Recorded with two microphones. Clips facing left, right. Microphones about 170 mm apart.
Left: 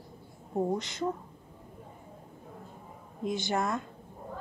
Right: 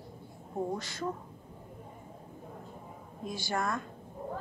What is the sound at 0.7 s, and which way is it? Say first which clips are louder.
Speech: left 4 dB; 20° left (ahead or behind).